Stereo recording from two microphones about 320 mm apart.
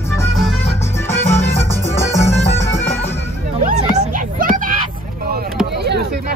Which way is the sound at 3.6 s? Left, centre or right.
Right.